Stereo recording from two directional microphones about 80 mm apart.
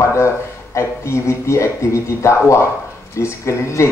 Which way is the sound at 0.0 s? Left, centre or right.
Left.